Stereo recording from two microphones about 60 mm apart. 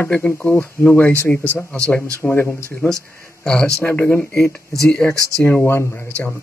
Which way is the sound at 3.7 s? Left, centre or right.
Left.